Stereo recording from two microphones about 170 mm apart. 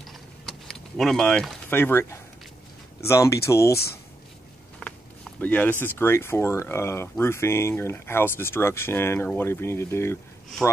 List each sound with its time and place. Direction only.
0.0 s a sound: centre (ahead or behind)
1.7 s speech: 15° left (ahead or behind)
4.7 s speech: 5° left (ahead or behind)